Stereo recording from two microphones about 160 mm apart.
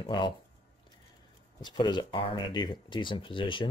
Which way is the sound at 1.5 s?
25° left (ahead or behind).